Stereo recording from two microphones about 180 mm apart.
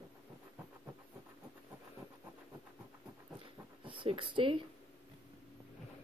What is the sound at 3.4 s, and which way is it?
Pant, 30° right (ahead or behind).